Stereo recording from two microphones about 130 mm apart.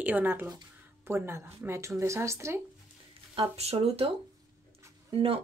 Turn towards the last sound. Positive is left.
turn(degrees=-40)  # may be behind; listen again after turning